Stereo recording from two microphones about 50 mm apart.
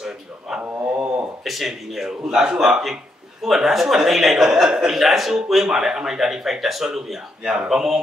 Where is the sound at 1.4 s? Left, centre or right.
Centre.